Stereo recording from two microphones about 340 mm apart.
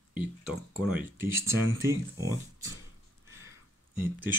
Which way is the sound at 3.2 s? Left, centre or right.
Centre.